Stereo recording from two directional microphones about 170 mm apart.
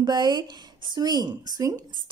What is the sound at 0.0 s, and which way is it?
A woman's voice, 25° right (ahead or behind).